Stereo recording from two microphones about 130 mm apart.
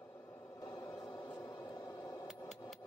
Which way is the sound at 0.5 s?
25° left (ahead or behind).